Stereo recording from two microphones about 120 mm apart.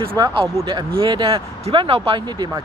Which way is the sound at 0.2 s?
35° right (ahead or behind).